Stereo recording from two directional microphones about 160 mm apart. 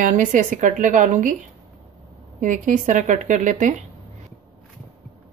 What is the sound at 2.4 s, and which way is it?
A woman's voice, 55° right (ahead or behind).